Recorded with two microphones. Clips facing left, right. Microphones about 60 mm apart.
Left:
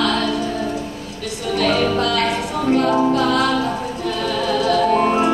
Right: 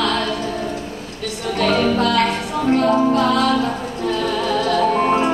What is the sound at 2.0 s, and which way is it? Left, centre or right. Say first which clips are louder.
Music: right 2 dB; right.